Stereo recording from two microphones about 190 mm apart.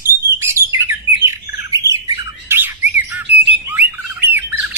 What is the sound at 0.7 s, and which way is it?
Bird, 15° right (ahead or behind).